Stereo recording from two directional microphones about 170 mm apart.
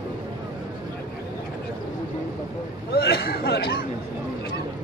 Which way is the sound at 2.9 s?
70° left (ahead or behind).